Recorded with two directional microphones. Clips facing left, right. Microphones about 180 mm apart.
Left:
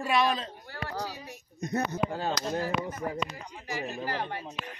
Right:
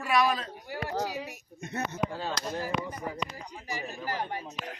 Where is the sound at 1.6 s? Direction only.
35° left (ahead or behind).